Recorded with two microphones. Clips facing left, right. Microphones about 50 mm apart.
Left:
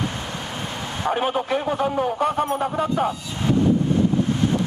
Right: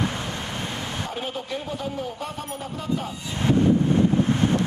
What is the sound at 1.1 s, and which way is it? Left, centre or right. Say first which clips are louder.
Speech: left 8 dB; left.